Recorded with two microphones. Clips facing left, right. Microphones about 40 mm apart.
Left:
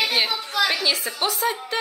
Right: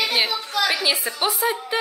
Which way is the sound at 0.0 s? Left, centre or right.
Centre.